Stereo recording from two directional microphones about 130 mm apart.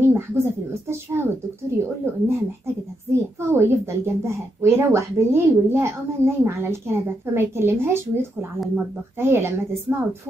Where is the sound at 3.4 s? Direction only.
20° right (ahead or behind).